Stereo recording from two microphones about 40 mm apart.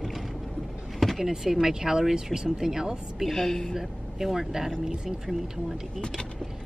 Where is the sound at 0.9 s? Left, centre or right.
Centre.